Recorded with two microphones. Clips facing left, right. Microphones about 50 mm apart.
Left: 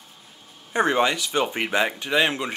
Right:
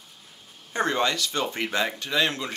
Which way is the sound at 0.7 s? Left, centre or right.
Centre.